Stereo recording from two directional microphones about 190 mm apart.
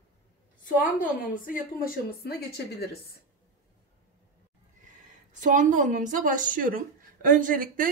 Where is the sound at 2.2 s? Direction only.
55° left (ahead or behind).